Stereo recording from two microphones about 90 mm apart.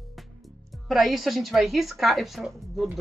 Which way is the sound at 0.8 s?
Centre (ahead or behind).